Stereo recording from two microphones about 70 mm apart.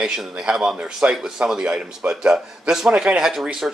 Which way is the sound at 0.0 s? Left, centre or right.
Centre.